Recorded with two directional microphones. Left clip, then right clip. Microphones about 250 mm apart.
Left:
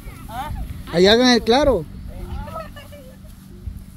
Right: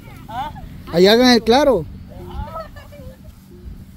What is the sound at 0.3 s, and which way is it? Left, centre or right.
Vehicle, centre.